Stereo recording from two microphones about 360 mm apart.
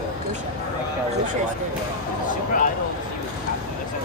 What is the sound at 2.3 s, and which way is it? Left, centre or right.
Speech, left.